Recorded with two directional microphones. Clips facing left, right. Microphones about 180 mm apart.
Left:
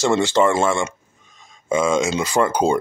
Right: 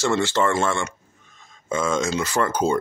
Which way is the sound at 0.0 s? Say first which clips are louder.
Left 4 dB; 15° left (ahead or behind).